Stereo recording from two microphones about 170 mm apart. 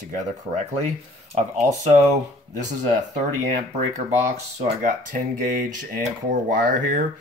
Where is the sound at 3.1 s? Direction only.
40° right (ahead or behind).